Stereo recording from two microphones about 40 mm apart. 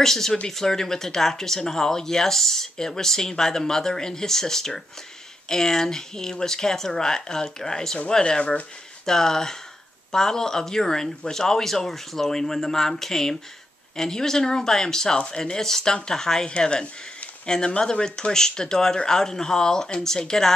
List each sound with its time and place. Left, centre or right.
0.0 s speech: centre
9.0 s speech: centre
16.4 s speech: left
17.5 s speech: centre